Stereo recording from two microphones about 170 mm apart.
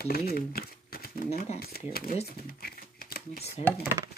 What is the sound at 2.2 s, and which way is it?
Shuffling cards, 65° left (ahead or behind).